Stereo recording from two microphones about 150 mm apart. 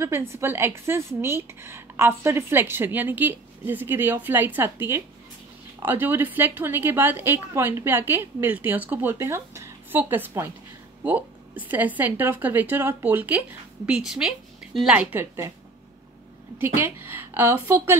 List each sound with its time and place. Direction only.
0.0 s a woman's voice: 15° right (ahead or behind)
15.1 s a woman's voice: 20° right (ahead or behind)
16.5 s a woman's voice: 15° right (ahead or behind)